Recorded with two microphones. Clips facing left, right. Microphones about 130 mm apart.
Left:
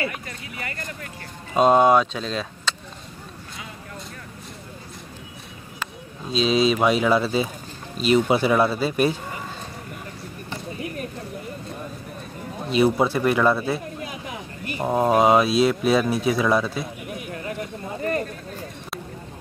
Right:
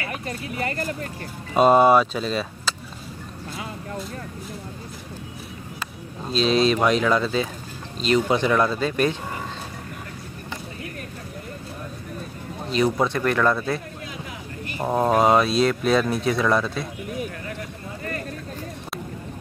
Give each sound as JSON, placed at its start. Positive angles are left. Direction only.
{"t": 0.3, "sound": "speech", "side_deg": -35}
{"t": 1.6, "sound": "speech", "side_deg": -5}
{"t": 6.3, "sound": "speech", "side_deg": 0}
{"t": 12.6, "sound": "speech", "side_deg": 5}
{"t": 14.8, "sound": "speech", "side_deg": 5}